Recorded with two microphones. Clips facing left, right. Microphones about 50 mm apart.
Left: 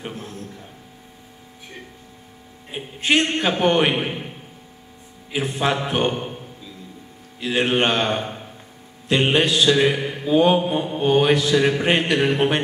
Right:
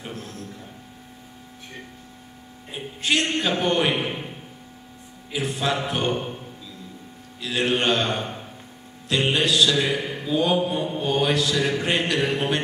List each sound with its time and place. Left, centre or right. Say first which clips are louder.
0.0 s a sound: left 3 dB; left
2.7 s speech: left 4 dB; left
5.3 s speech: left 3 dB; left
7.3 s speech: left 3 dB; left
10.0 s mantra: left 6 dB; left
11.0 s speech: left 6 dB; left